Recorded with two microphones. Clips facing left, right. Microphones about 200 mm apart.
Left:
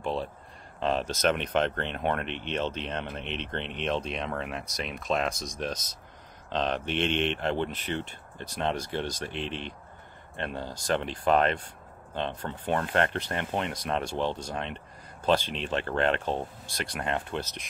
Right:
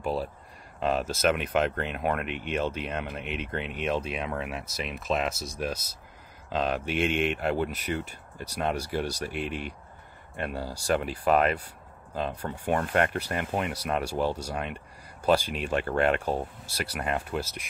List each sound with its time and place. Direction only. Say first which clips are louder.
0.0 s speech: right 1 dB; 10° right (ahead or behind)